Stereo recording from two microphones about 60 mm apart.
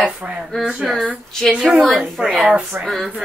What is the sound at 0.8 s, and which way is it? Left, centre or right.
A woman's voice, centre.